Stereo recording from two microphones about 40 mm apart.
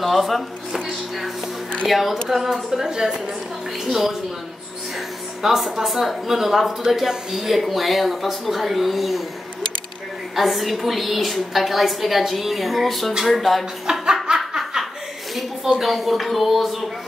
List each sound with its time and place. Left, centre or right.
0.0 s speech: centre
1.9 s speech: centre
5.4 s speech: centre
10.3 s speech: centre
13.9 s snicker: centre
15.8 s speech: centre